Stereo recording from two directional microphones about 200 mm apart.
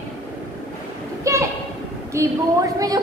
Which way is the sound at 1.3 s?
15° right (ahead or behind).